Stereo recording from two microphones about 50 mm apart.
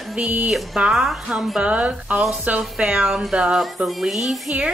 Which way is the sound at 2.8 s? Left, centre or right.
Right.